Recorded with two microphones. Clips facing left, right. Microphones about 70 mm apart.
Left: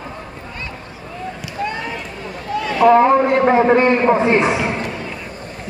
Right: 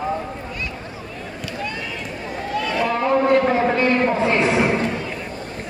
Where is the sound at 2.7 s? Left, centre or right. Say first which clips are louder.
Left 9 dB; left.